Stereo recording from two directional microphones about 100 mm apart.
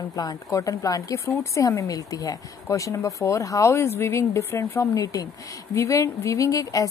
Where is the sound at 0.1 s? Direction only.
40° left (ahead or behind).